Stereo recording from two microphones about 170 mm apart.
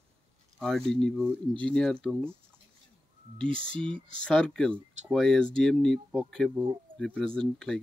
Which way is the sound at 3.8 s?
30° right (ahead or behind).